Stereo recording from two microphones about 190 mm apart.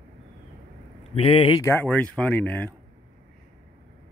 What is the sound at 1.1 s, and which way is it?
Speech, 30° left (ahead or behind).